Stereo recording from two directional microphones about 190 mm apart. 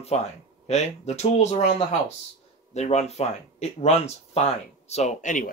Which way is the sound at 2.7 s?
35° left (ahead or behind).